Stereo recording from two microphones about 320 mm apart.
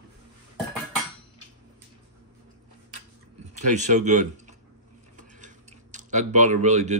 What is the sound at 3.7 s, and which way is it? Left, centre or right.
Speech, right.